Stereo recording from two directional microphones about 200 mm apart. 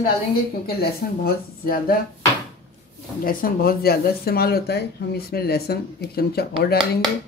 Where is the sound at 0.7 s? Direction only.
50° left (ahead or behind).